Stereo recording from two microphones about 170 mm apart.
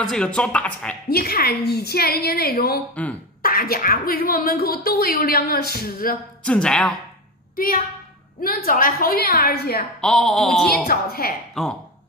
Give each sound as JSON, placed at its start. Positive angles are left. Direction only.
{"t": 0.0, "sound": "a woman's voice", "side_deg": 5}
{"t": 1.0, "sound": "speech", "side_deg": 65}
{"t": 6.4, "sound": "speech", "side_deg": 5}
{"t": 7.5, "sound": "speech", "side_deg": 55}
{"t": 9.9, "sound": "speech", "side_deg": 5}
{"t": 10.9, "sound": "speech", "side_deg": 60}
{"t": 11.6, "sound": "speech", "side_deg": 0}